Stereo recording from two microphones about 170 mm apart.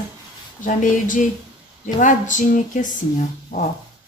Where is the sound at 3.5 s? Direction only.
55° left (ahead or behind).